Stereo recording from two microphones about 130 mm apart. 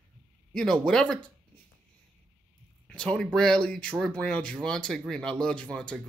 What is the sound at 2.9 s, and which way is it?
Speech, 5° left (ahead or behind).